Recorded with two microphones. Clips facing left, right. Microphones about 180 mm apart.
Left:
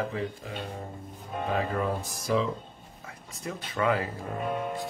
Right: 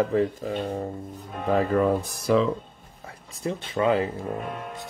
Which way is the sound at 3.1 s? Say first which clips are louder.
Right 7 dB; 30° right (ahead or behind).